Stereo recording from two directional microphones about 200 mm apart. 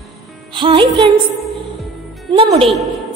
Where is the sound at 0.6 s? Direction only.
25° right (ahead or behind).